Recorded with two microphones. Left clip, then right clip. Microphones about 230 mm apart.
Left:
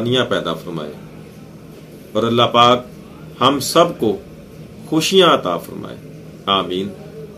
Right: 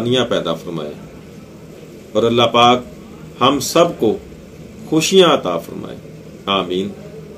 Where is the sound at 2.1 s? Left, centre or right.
Centre.